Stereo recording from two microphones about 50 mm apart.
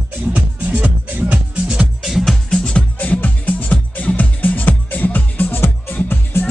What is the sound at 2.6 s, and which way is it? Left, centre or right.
Music, left.